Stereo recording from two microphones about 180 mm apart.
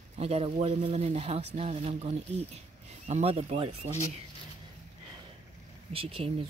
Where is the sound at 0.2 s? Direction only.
35° right (ahead or behind).